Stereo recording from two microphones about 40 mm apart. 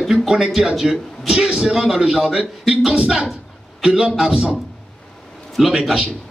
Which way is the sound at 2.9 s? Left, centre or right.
Centre.